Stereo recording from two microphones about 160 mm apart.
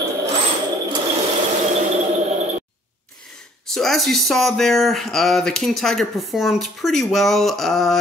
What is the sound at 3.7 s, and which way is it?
Speech, centre (ahead or behind).